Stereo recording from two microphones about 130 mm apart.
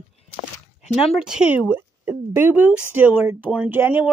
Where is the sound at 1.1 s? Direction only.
5° right (ahead or behind).